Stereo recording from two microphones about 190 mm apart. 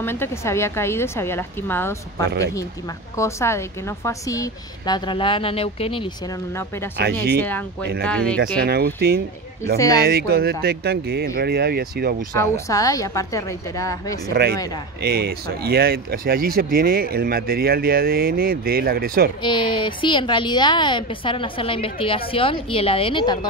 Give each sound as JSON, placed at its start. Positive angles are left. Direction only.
{"t": 0.0, "sound": "a woman's voice", "side_deg": 10}
{"t": 7.0, "sound": "speech", "side_deg": -60}
{"t": 7.3, "sound": "speech", "side_deg": 10}
{"t": 8.6, "sound": "speech", "side_deg": -55}
{"t": 12.4, "sound": "speech", "side_deg": 15}
{"t": 14.3, "sound": "speech", "side_deg": -55}
{"t": 19.4, "sound": "a woman's voice", "side_deg": 25}